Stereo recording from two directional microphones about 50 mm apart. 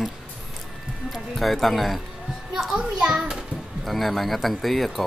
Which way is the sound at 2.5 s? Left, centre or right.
Centre.